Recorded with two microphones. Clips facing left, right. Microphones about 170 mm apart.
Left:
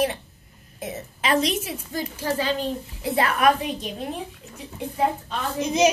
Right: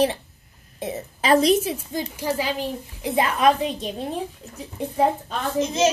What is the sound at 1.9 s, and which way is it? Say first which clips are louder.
A woman's voice: right 1 dB; 15° right (ahead or behind).